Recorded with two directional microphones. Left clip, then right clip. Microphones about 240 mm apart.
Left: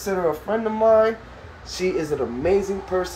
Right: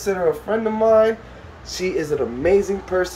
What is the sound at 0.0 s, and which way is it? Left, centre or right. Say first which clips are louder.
Speech: right 3 dB; centre.